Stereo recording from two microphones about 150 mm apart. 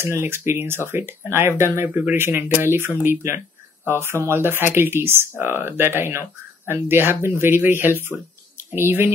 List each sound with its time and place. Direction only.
0.0 s speech: 15° right (ahead or behind)